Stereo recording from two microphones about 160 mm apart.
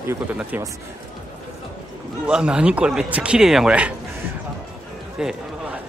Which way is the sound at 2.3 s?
5° right (ahead or behind).